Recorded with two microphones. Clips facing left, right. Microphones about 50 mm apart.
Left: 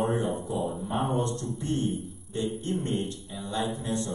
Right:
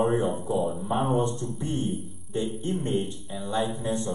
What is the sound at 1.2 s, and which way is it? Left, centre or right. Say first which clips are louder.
A man's voice: right 3 dB; centre.